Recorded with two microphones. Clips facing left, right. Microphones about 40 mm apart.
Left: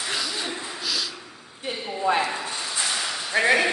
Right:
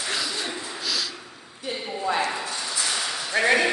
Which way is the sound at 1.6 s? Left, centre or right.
Left.